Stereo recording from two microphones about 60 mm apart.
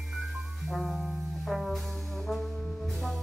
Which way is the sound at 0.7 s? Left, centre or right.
Centre.